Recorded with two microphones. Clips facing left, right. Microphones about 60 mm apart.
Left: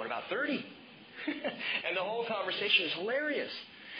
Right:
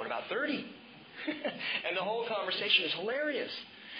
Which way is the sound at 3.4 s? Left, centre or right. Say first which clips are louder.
Right 1 dB; left.